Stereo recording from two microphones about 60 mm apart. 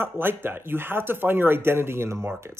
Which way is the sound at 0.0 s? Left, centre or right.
Right.